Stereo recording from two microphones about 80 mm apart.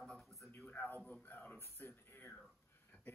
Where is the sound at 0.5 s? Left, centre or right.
Centre.